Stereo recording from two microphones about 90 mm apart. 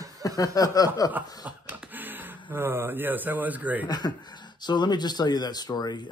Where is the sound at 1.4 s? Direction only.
15° right (ahead or behind).